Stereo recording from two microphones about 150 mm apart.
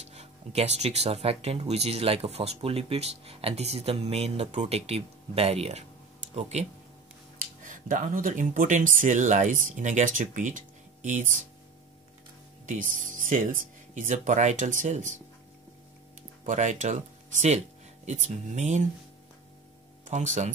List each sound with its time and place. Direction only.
0.0 s speech: 45° right (ahead or behind)
12.6 s speech: 60° right (ahead or behind)
16.4 s speech: 55° right (ahead or behind)